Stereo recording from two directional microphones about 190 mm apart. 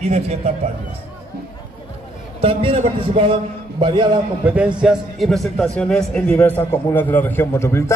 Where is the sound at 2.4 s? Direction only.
35° right (ahead or behind).